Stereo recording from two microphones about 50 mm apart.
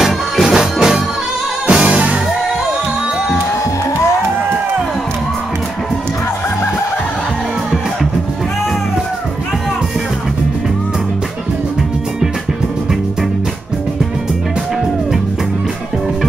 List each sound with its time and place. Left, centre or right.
0.0 s music: centre